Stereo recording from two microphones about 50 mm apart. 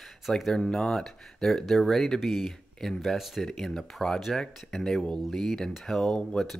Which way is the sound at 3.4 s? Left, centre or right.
Centre.